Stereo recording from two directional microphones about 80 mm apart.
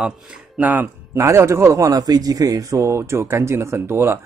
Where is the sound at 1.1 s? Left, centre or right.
Right.